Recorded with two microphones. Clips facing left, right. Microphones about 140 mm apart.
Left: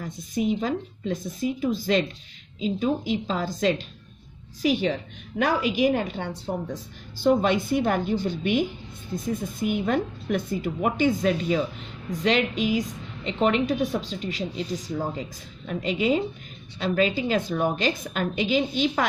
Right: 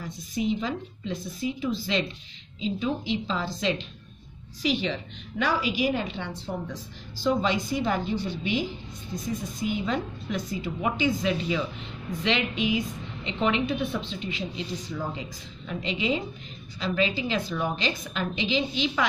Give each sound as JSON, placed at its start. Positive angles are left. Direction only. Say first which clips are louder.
{"t": 0.0, "sound": "a woman's voice", "louder": "left 3 dB", "side_deg": 50}